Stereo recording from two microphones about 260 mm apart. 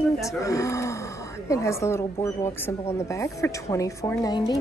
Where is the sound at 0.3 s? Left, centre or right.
Centre.